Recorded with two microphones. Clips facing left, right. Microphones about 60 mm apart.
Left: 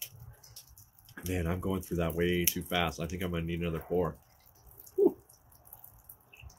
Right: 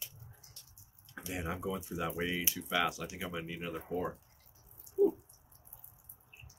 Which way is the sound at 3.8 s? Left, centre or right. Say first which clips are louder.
Left 7 dB; centre.